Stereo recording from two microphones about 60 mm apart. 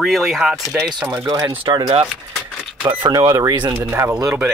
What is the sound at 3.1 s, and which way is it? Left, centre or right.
Speech, right.